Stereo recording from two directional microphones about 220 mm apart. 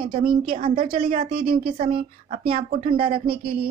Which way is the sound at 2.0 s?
25° right (ahead or behind).